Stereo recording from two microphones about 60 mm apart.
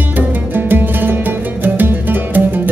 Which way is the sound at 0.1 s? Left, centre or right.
Right.